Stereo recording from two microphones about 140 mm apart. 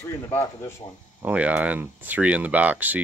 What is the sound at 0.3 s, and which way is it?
Speech, 20° left (ahead or behind).